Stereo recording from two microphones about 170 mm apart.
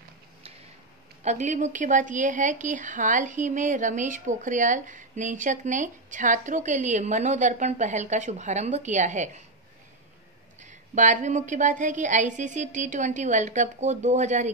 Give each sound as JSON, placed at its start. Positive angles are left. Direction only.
{"t": 1.2, "sound": "a woman's voice", "side_deg": -45}
{"t": 10.6, "sound": "a woman's voice", "side_deg": -45}